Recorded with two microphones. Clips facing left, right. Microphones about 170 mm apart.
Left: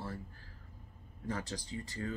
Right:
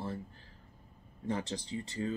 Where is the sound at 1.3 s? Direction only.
25° right (ahead or behind).